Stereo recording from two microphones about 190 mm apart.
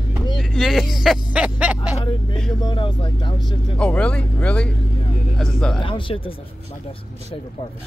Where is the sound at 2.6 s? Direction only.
25° left (ahead or behind).